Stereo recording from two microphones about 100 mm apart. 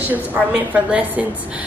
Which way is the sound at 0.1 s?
15° right (ahead or behind).